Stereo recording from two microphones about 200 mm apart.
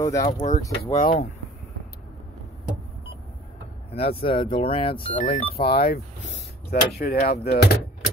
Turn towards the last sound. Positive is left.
turn(degrees=50)  # may be behind; listen again after turning